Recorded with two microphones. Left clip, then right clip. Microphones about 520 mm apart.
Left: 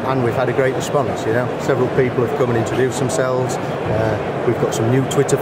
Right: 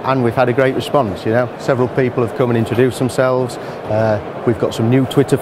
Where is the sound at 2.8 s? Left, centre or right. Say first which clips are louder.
Right 6 dB; right.